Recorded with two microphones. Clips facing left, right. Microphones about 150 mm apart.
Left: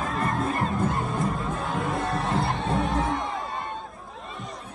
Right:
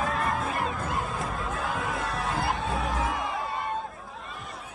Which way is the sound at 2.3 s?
Centre (ahead or behind).